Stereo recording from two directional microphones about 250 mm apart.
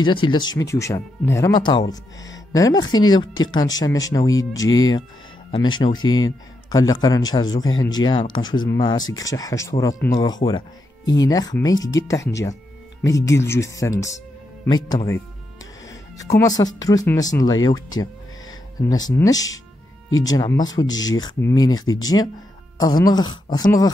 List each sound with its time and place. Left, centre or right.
0.0 s speech: centre